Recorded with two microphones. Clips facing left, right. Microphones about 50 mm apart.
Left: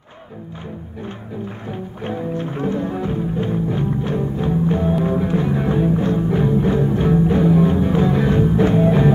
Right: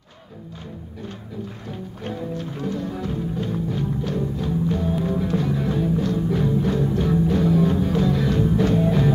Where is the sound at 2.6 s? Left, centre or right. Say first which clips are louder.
Left 5 dB; left.